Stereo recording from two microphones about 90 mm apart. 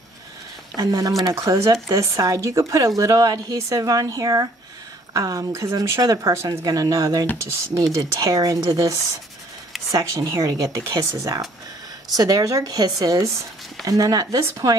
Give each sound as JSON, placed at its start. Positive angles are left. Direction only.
{"t": 0.7, "sound": "speech", "side_deg": -40}
{"t": 9.8, "sound": "speech", "side_deg": -40}